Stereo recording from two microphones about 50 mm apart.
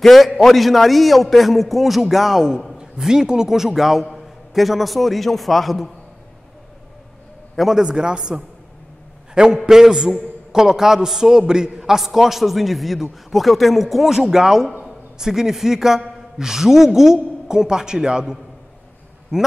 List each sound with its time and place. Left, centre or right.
0.0 s a man's voice: centre
7.5 s a man's voice: centre
7.8 s a man's voice: centre